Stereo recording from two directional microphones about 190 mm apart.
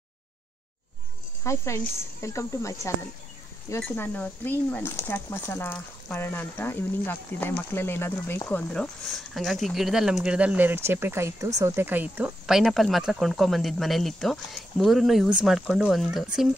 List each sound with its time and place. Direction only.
1.4 s speech: 15° left (ahead or behind); by 16.4 s 5° right (ahead or behind)